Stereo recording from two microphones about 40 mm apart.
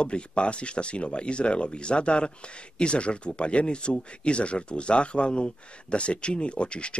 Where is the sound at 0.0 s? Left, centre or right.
Left.